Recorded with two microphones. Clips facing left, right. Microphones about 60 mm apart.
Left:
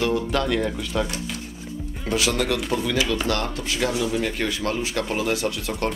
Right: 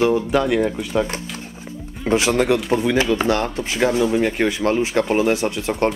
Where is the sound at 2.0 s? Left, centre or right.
Right.